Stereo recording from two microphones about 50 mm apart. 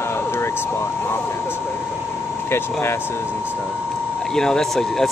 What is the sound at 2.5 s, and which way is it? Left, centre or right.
Speech, left.